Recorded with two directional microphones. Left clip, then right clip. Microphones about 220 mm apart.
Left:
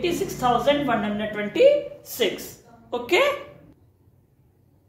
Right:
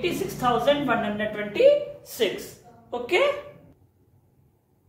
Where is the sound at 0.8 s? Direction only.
15° left (ahead or behind).